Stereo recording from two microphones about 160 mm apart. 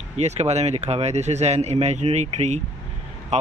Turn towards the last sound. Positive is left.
turn(degrees=-45)  # may be behind; listen again after turning